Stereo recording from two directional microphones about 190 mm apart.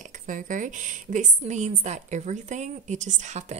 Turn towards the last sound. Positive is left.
turn(degrees=-35)  # may be behind; listen again after turning